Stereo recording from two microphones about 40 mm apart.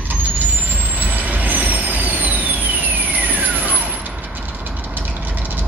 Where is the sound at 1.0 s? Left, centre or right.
Right.